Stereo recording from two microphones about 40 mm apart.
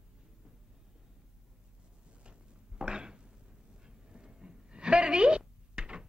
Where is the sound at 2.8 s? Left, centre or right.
Right.